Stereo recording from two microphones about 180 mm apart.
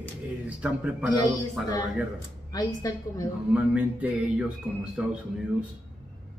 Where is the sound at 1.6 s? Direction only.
5° right (ahead or behind).